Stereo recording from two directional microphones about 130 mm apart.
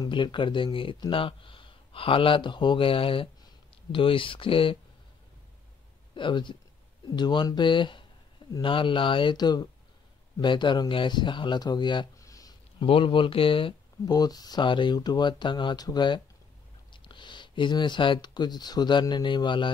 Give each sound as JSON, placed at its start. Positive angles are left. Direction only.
{"t": 0.0, "sound": "speech", "side_deg": 40}
{"t": 6.1, "sound": "speech", "side_deg": 40}
{"t": 12.2, "sound": "a sound", "side_deg": 25}
{"t": 12.8, "sound": "speech", "side_deg": 45}
{"t": 14.0, "sound": "speech", "side_deg": 30}